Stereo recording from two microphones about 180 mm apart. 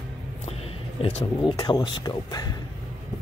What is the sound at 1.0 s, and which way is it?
Speech, 25° left (ahead or behind).